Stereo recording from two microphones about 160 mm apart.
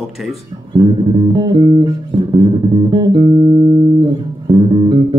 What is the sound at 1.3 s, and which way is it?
Music, 25° right (ahead or behind).